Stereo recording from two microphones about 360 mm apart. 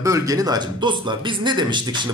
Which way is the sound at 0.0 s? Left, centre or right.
Centre.